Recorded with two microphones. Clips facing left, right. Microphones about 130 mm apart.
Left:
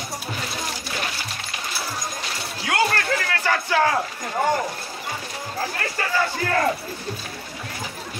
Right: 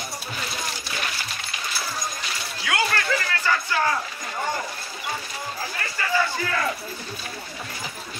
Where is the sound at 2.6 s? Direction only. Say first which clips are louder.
Left 3 dB; 55° left (ahead or behind).